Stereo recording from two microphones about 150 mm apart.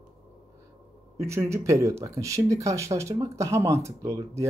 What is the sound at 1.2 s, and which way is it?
Speech, 20° right (ahead or behind).